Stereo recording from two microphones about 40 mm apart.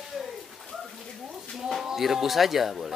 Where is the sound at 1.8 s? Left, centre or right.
Centre.